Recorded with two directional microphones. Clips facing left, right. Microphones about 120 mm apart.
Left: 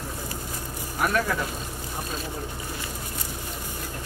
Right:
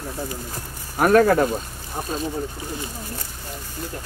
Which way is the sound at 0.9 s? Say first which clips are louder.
Right 10 dB; 45° right (ahead or behind).